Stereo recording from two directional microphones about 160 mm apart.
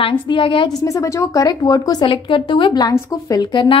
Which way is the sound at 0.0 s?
30° left (ahead or behind).